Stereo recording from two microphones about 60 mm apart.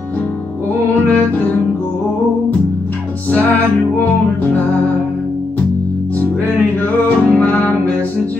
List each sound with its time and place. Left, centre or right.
1.0 s music: left
6.8 s music: left